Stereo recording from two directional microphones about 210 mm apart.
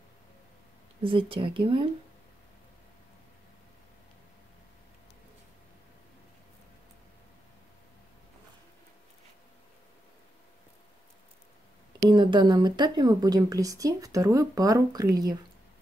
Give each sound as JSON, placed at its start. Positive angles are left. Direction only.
{"t": 1.0, "sound": "speech", "side_deg": -25}
{"t": 12.1, "sound": "speech", "side_deg": -20}